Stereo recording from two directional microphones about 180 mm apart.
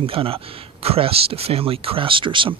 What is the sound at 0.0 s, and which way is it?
Speech, 30° right (ahead or behind).